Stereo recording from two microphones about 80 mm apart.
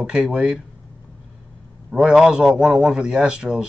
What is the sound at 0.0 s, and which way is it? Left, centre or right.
Speech, centre.